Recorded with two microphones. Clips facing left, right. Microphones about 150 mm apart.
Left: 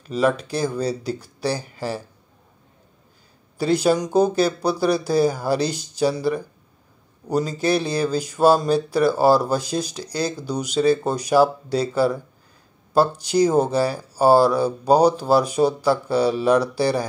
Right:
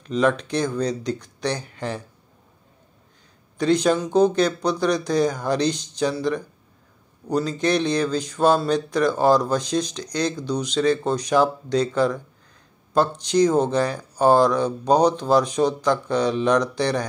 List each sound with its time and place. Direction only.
0.0 s speech: 5° left (ahead or behind)
3.5 s speech: 5° left (ahead or behind)